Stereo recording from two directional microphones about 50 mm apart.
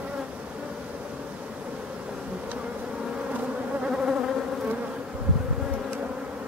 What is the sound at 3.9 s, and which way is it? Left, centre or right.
Insect, centre.